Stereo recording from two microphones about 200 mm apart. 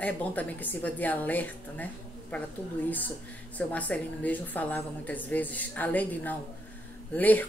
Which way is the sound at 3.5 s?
5° left (ahead or behind).